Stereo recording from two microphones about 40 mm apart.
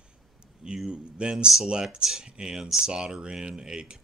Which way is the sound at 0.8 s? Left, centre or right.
Right.